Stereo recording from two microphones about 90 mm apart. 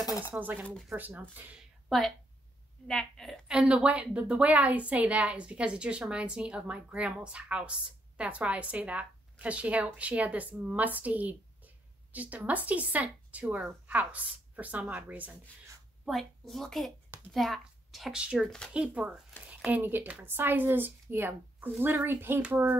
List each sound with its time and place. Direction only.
0.4 s speech: 20° right (ahead or behind)
1.9 s a woman's voice: 5° left (ahead or behind)
3.4 s a woman's voice: 10° right (ahead or behind)
16.1 s a woman's voice: centre (ahead or behind)
18.7 s a woman's voice: 15° right (ahead or behind)
19.4 s a sound: 15° right (ahead or behind)
19.8 s speech: 25° right (ahead or behind)